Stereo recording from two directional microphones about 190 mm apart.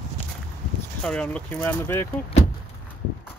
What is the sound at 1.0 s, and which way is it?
Speech, 5° left (ahead or behind).